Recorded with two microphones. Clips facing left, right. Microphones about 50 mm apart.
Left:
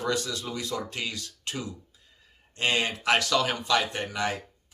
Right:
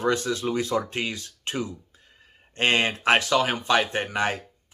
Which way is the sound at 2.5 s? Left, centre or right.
Right.